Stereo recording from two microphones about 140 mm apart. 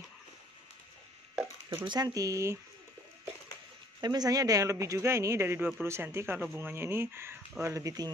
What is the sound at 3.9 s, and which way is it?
A woman's voice, 30° right (ahead or behind).